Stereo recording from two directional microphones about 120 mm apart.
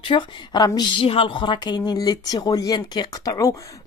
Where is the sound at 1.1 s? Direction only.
50° left (ahead or behind); by 3.5 s 30° left (ahead or behind).